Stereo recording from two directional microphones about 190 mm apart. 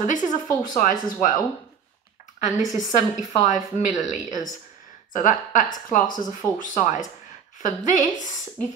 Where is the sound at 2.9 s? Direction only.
40° left (ahead or behind).